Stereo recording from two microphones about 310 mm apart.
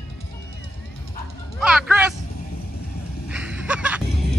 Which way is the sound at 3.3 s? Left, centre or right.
Centre.